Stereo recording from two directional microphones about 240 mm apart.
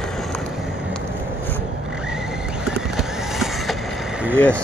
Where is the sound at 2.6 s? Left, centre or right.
Centre.